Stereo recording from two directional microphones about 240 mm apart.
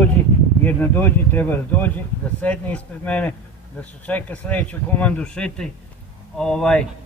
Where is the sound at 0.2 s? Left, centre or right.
Centre.